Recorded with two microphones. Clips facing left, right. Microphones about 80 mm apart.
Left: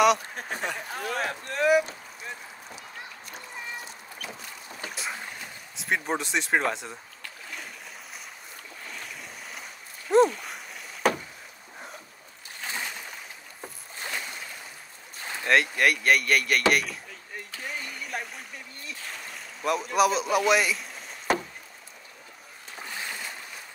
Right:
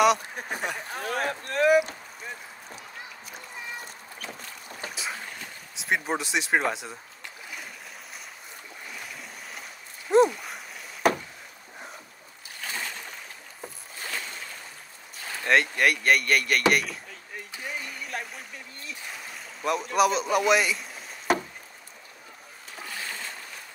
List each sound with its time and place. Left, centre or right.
0.0 s speech: centre
1.0 s speech: right
4.8 s boat: centre
5.8 s speech: centre
8.8 s boat: centre
12.6 s splash: left
14.0 s a sound: centre
15.4 s speech: centre
17.6 s a sound: centre
18.9 s boat: centre
22.8 s a sound: left